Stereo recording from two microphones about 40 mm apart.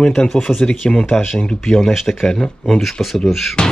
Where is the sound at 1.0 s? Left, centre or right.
Centre.